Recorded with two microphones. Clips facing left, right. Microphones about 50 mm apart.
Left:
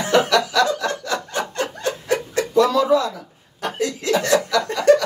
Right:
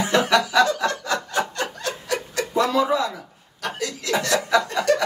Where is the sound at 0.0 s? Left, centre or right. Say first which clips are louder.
Left 2 dB; centre.